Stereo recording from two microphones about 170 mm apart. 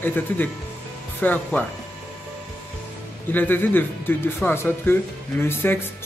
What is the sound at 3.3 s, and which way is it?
Speech, 10° left (ahead or behind).